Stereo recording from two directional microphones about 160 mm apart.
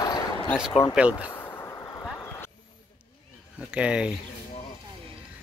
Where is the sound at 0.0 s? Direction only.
25° left (ahead or behind).